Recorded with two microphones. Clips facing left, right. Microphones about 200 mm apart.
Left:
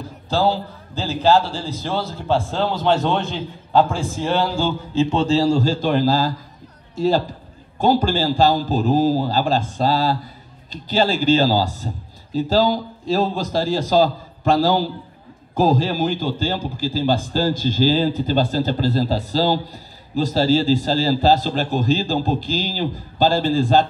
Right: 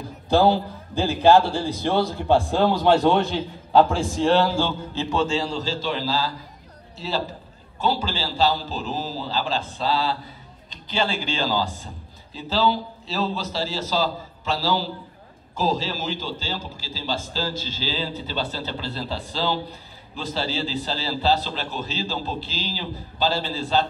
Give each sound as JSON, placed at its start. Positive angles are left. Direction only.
{"t": 0.3, "sound": "a man's voice", "side_deg": -15}
{"t": 1.3, "sound": "a man's voice", "side_deg": -60}
{"t": 2.0, "sound": "a man's voice", "side_deg": -15}
{"t": 4.9, "sound": "a man's voice", "side_deg": 30}